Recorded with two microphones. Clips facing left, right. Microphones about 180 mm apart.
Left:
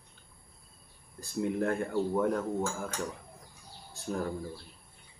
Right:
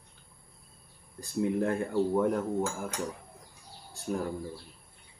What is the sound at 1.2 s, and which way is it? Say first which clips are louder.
Speech: right 2 dB; 15° right (ahead or behind).